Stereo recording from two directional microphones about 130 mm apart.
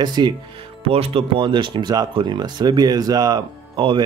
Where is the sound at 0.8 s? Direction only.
45° right (ahead or behind).